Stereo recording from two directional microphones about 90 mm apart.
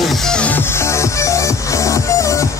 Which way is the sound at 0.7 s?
30° left (ahead or behind).